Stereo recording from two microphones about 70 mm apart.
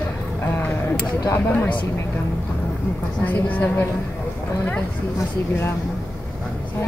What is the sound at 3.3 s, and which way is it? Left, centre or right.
Speech, left.